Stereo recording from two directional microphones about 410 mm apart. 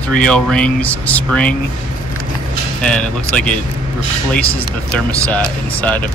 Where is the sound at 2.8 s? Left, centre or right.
Centre.